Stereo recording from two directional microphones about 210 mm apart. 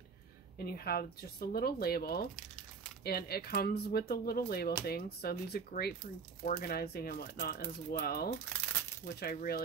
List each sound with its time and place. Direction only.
0.6 s speech: 45° left (ahead or behind)